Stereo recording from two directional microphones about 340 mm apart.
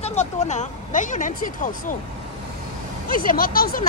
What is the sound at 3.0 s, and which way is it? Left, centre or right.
Speech, left.